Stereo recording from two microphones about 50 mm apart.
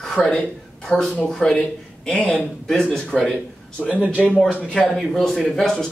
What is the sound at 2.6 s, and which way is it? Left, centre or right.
Speech, centre.